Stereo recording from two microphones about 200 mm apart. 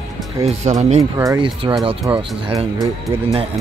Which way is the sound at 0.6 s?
30° right (ahead or behind).